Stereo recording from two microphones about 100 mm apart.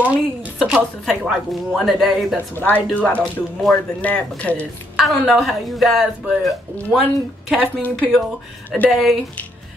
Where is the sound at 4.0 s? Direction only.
15° left (ahead or behind).